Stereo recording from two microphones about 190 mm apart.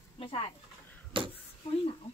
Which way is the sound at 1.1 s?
25° right (ahead or behind).